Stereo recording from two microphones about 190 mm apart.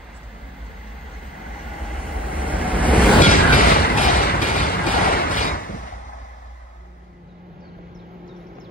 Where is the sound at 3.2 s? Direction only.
45° left (ahead or behind).